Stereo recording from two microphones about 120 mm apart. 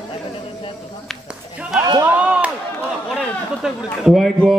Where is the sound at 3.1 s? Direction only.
Centre (ahead or behind).